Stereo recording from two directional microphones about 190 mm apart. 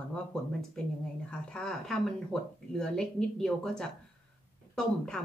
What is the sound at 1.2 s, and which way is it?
Speech, 5° left (ahead or behind).